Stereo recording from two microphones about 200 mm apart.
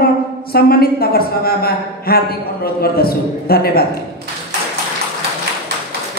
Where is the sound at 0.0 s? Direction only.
50° left (ahead or behind).